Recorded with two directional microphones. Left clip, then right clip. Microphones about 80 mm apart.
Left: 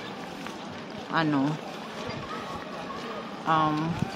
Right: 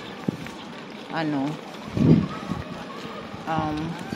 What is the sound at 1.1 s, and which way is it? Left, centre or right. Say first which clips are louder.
Speech: left 1 dB; left.